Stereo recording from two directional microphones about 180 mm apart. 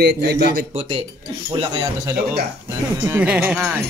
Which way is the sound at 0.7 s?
30° right (ahead or behind).